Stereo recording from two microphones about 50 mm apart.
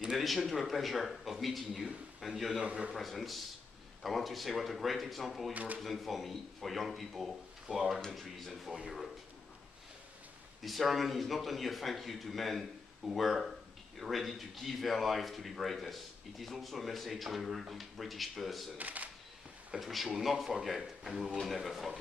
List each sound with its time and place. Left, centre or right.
0.2 s a man's voice: centre
2.6 s a man's voice: right
2.9 s a man's voice: centre
5.5 s speech: right
5.8 s a man's voice: centre
10.6 s a man's voice: centre
18.8 s speech: right
19.7 s a man's voice: centre
21.1 s speech: centre
21.4 s a man's voice: centre